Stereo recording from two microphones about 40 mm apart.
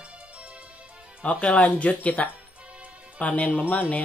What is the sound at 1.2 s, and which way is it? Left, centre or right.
Speech, left.